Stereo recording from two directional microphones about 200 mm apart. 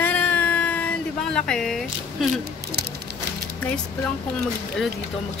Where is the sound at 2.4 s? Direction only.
55° right (ahead or behind).